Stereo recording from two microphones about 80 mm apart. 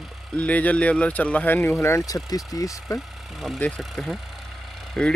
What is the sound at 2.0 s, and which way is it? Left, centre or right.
Speech, left.